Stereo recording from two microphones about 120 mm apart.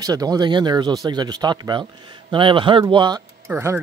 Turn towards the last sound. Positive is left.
turn(degrees=-20)  # may be behind; listen again after turning